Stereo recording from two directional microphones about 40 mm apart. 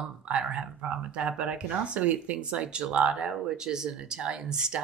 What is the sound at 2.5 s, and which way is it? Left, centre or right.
Speech, right.